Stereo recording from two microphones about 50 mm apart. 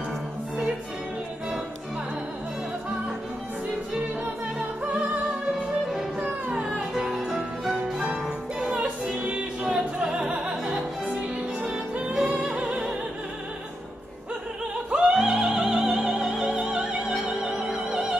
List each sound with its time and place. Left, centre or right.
6.1 s music: right
6.6 s music: centre
10.0 s opera: centre
12.2 s music: right
14.9 s opera: centre